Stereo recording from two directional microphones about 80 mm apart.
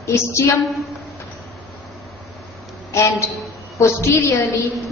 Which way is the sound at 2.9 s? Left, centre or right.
Left.